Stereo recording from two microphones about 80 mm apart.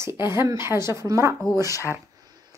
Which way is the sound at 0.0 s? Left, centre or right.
Right.